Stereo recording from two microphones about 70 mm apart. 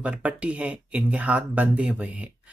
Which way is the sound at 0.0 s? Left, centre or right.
Centre.